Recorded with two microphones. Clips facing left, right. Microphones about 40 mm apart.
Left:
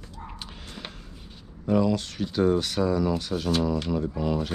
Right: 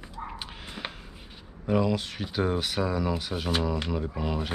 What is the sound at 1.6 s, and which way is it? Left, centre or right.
Speech, centre.